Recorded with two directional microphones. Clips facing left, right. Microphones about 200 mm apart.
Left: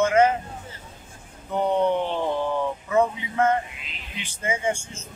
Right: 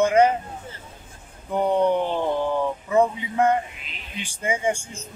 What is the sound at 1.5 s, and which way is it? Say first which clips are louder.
Speech: right 2 dB; 10° right (ahead or behind).